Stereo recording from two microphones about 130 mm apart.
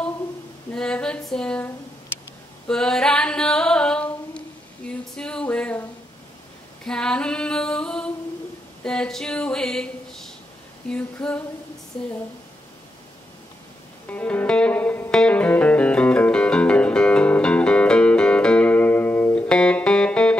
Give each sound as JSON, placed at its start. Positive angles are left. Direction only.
{"t": 0.7, "sound": "female singing", "side_deg": 5}
{"t": 2.7, "sound": "singing", "side_deg": 5}
{"t": 4.8, "sound": "a sound", "side_deg": 5}
{"t": 6.8, "sound": "female singing", "side_deg": 5}
{"t": 8.8, "sound": "a sound", "side_deg": 5}
{"t": 10.9, "sound": "female singing", "side_deg": 10}
{"t": 14.0, "sound": "music", "side_deg": 10}